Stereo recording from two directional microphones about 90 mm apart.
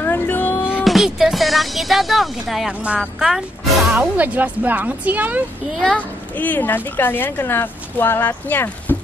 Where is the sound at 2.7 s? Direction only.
15° right (ahead or behind).